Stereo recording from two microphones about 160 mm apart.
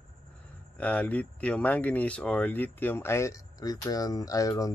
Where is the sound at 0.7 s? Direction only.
10° left (ahead or behind).